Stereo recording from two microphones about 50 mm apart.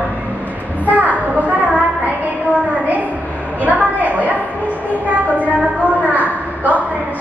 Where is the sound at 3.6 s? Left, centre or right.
Right.